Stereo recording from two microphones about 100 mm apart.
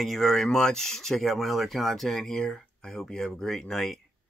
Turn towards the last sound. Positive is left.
turn(degrees=5)  # may be behind; listen again after turning